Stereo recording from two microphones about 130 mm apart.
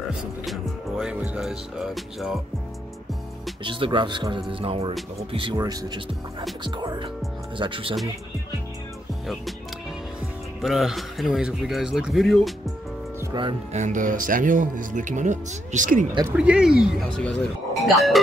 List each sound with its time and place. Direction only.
0.1 s music: centre (ahead or behind)
1.2 s speech: 5° right (ahead or behind)
3.6 s speech: 40° right (ahead or behind)
10.6 s speech: 5° right (ahead or behind)
13.3 s speech: 40° right (ahead or behind)
13.7 s speech: 80° right
16.3 s speech: 5° right (ahead or behind)
17.1 s speech: 5° left (ahead or behind)